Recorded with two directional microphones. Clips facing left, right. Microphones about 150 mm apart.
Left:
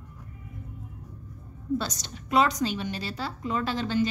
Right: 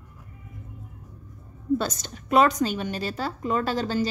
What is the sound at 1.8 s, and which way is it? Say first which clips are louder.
A woman's voice: right 4 dB; 50° right (ahead or behind).